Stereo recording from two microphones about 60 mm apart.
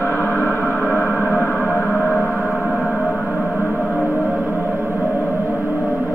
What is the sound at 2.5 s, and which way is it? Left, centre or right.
Gong, centre.